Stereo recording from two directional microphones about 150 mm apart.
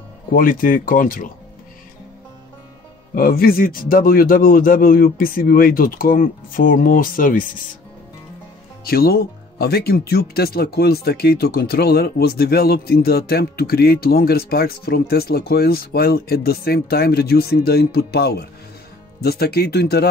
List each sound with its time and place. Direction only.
0.3 s a man's voice: 70° left (ahead or behind)
3.2 s a man's voice: 75° left (ahead or behind)
8.8 s speech: 90° left